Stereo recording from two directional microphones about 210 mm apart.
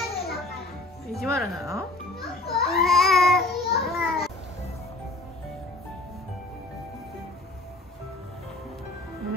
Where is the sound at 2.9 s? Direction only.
Centre (ahead or behind).